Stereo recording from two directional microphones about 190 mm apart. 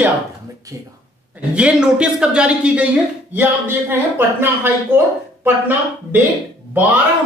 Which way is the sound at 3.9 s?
10° right (ahead or behind).